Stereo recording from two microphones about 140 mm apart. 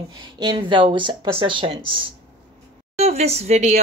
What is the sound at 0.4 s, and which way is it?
Speech, 35° right (ahead or behind).